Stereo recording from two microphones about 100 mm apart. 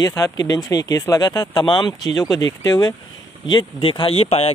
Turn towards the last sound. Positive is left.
turn(degrees=85)